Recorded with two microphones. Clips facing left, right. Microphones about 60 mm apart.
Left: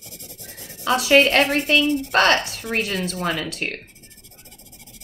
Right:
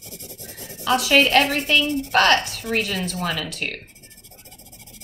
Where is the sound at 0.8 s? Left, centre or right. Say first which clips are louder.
Left 2 dB; left.